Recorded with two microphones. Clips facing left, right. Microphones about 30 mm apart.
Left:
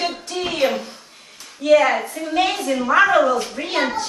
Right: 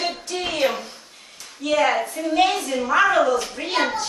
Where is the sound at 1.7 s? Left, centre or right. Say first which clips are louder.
Left 5 dB; centre.